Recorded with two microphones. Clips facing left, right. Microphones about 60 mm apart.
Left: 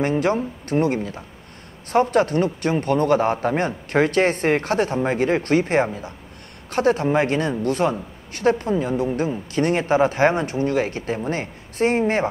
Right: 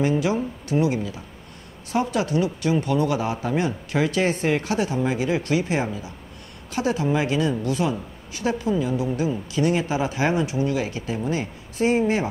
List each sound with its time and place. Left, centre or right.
0.0 s a woman's voice: left